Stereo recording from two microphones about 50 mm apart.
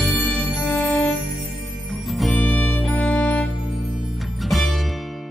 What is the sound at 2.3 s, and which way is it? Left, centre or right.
Music, left.